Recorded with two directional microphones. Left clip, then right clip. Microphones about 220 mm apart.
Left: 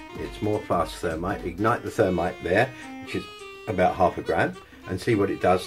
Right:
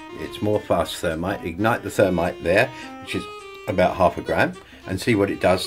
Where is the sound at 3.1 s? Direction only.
Centre (ahead or behind).